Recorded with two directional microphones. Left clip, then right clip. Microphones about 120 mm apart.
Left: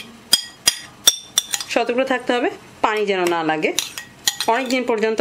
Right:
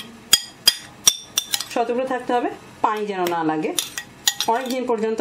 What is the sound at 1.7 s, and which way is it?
Speech, 45° left (ahead or behind).